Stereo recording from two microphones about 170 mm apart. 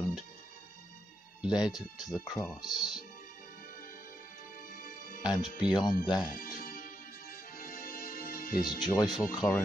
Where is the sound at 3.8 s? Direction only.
55° left (ahead or behind).